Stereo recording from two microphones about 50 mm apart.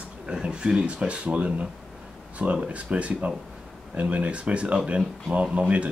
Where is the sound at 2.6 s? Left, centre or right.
Right.